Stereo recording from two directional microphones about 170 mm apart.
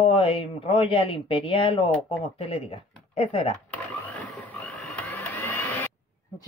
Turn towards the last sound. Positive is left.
turn(degrees=10)  # may be behind; listen again after turning